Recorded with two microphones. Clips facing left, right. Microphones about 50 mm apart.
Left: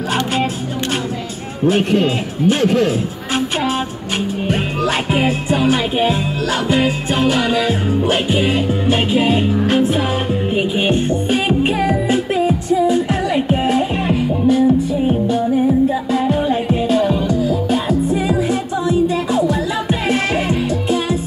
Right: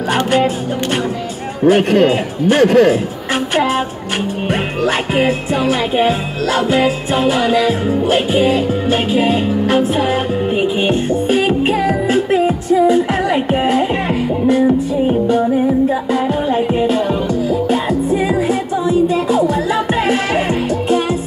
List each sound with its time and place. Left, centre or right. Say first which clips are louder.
1.7 s a man's voice: right 4 dB; right
2.6 s a man's voice: right 9 dB; right
5.1 s music: right 1 dB; centre
9.7 s music: right 2 dB; centre
12.1 s music: right 2 dB; right
15.2 s music: right 2 dB; right